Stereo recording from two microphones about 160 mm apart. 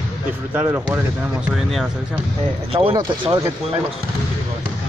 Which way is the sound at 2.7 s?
30° right (ahead or behind).